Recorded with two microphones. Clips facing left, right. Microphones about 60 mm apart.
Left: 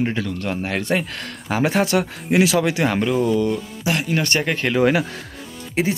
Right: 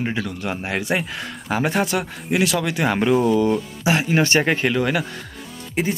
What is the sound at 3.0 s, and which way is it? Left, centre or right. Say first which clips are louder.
Speech: right 2 dB; centre.